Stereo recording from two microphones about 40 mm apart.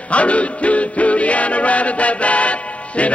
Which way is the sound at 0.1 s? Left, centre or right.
Left.